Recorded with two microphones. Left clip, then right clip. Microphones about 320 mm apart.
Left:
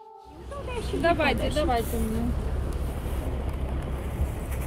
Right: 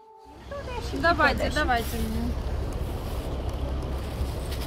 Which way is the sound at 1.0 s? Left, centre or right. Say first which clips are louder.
Right 2 dB; right.